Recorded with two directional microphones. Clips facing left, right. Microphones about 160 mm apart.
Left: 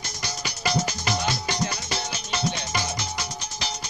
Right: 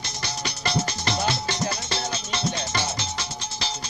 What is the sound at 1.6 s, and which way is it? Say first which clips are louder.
Music: right 1 dB; 30° right (ahead or behind).